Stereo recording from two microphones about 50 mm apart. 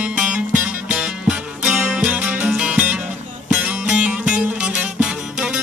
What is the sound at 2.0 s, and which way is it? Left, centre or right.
Music, right.